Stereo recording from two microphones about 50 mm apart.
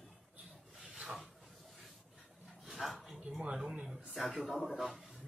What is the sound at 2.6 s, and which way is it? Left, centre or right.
Dog, centre.